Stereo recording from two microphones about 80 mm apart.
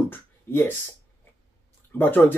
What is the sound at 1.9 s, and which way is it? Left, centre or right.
Speech, left.